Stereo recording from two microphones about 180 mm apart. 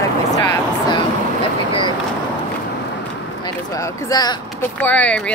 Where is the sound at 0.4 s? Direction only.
25° left (ahead or behind).